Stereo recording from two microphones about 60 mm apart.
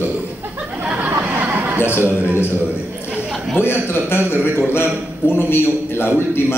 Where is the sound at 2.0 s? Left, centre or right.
Right.